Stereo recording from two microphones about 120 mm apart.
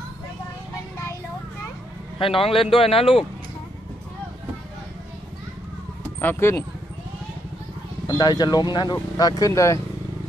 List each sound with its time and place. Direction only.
2.1 s speech: 50° left (ahead or behind)
6.2 s speech: 20° left (ahead or behind)
8.1 s speech: 35° left (ahead or behind)